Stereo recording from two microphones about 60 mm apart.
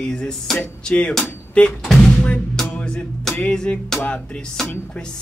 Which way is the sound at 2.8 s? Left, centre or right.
Centre.